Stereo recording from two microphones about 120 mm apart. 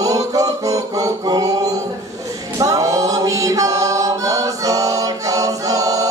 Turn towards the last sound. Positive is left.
turn(degrees=-30)  # may be behind; listen again after turning